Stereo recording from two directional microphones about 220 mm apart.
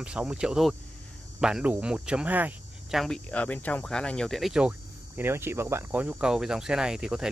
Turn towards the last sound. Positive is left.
turn(degrees=0)  # may be behind; listen again after turning